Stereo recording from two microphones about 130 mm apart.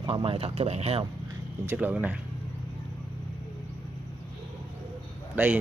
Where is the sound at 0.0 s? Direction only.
40° right (ahead or behind).